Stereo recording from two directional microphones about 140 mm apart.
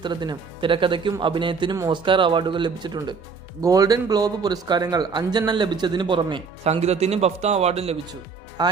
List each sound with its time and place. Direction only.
0.0 s a man's voice: 30° right (ahead or behind)
6.6 s speech: 50° right (ahead or behind)
8.6 s a man's voice: 30° right (ahead or behind)